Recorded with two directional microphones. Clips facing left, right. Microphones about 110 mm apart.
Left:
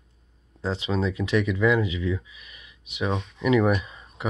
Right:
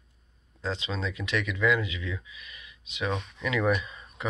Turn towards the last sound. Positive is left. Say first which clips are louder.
# left 3 dB
turn(degrees=25)  # may be behind; listen again after turning